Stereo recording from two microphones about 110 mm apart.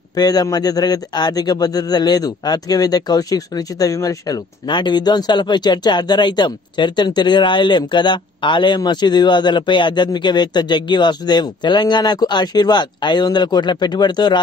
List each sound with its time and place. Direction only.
0.1 s speech: 35° left (ahead or behind)
4.6 s speech: 45° left (ahead or behind)